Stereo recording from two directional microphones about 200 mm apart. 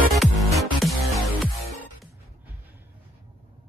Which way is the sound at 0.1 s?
Centre (ahead or behind).